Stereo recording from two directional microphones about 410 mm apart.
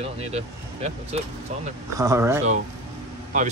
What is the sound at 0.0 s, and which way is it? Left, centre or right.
Speech, centre.